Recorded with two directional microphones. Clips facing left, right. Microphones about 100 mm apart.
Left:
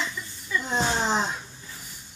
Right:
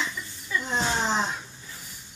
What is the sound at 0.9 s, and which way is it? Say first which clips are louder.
Speech: even; 10° left (ahead or behind).